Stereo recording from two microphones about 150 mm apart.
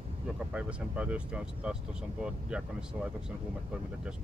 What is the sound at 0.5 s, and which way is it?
Speech, 5° right (ahead or behind).